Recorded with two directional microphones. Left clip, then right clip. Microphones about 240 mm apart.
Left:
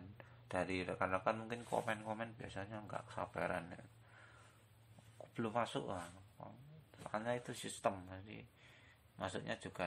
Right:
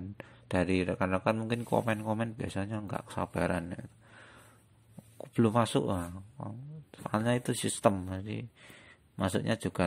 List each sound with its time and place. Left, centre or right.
0.2 s speech: right